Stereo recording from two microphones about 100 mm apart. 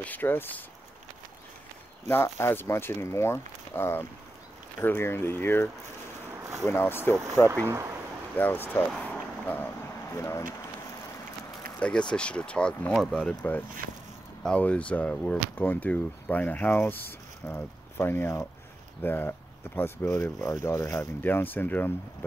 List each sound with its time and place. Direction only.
0.0 s speech: 20° left (ahead or behind)
2.0 s speech: 25° left (ahead or behind)
7.6 s speech: 25° right (ahead or behind)
8.4 s speech: 20° left (ahead or behind)
9.0 s a sound: 15° left (ahead or behind)
10.1 s speech: 30° left (ahead or behind)
12.1 s speech: 10° left (ahead or behind)